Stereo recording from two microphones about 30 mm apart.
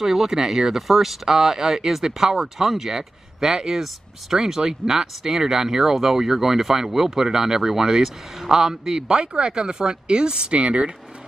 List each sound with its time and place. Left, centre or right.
0.0 s a man's voice: centre; by 10.9 s right